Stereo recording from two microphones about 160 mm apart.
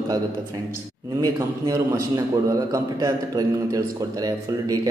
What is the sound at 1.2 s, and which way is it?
A man's voice, 20° right (ahead or behind).